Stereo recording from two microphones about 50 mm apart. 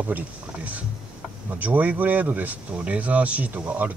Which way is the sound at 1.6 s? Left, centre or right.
Right.